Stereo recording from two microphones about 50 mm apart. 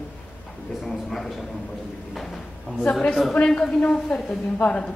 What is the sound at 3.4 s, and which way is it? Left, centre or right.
A woman's voice, centre.